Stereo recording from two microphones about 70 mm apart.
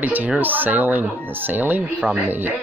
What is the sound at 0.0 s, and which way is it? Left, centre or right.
Speech, right.